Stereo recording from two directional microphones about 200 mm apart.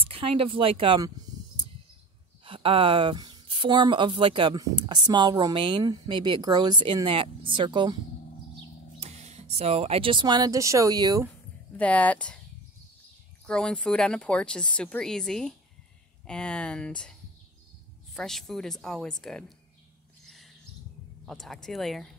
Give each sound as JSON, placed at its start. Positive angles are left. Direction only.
{"t": 0.1, "sound": "speech", "side_deg": -25}
{"t": 9.0, "sound": "speech", "side_deg": -35}
{"t": 11.7, "sound": "speech", "side_deg": 5}
{"t": 13.5, "sound": "speech", "side_deg": 5}
{"t": 21.3, "sound": "speech", "side_deg": 0}